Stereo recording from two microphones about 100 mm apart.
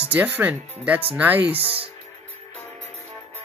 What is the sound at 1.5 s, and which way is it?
Speech, 70° right (ahead or behind).